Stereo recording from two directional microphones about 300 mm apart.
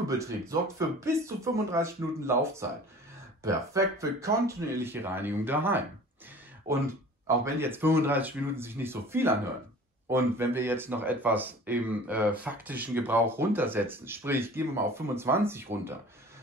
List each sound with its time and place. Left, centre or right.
0.2 s speech: centre
6.7 s speech: right
7.4 s speech: centre